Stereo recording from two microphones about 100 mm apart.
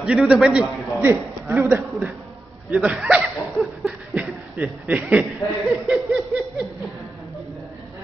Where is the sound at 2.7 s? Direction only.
10° right (ahead or behind).